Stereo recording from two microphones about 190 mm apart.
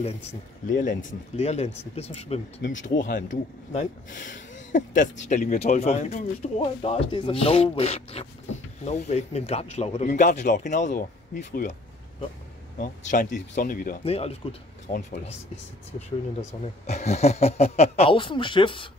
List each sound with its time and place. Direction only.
0.7 s speech: 45° left (ahead or behind)
2.7 s speech: 80° left
3.0 s speech: 45° left (ahead or behind)
12.7 s speech: 45° left (ahead or behind)
14.0 s speech: 30° left (ahead or behind)
14.9 s speech: 45° left (ahead or behind)
16.3 s speech: 35° left (ahead or behind)